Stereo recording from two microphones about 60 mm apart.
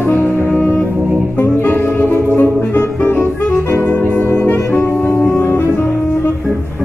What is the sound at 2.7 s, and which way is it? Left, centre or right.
Music, left.